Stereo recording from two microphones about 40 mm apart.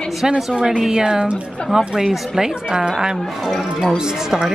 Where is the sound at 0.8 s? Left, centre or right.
Centre.